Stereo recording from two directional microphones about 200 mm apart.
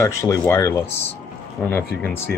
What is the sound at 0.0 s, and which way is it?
Speech, 15° left (ahead or behind).